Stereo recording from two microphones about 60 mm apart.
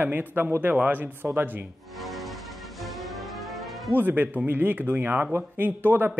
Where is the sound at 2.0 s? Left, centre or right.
Centre.